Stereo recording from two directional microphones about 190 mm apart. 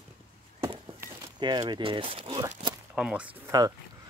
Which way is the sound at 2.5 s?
25° right (ahead or behind).